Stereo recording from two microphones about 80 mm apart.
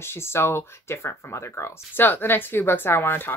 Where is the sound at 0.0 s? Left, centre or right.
Left.